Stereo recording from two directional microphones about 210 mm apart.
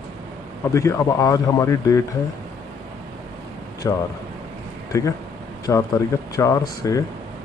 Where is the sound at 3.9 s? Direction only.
15° left (ahead or behind).